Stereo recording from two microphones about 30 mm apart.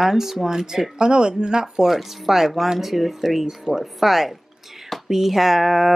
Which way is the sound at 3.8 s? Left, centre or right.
Centre.